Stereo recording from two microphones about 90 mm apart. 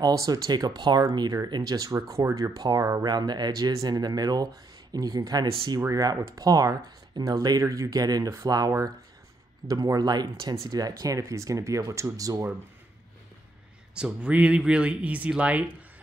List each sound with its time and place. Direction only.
0.0 s speech: 45° right (ahead or behind)
13.9 s speech: 10° right (ahead or behind)